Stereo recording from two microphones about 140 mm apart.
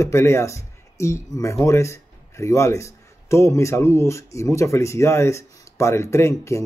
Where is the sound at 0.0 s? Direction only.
20° left (ahead or behind).